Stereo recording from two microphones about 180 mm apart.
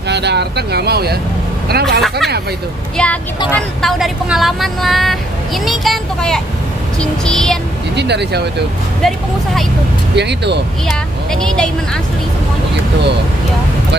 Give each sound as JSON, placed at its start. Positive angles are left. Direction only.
{"t": 0.1, "sound": "speech", "side_deg": -70}
{"t": 2.0, "sound": "speech", "side_deg": 0}
{"t": 7.9, "sound": "speech", "side_deg": -70}
{"t": 10.1, "sound": "speech", "side_deg": -70}
{"t": 11.4, "sound": "speech", "side_deg": 5}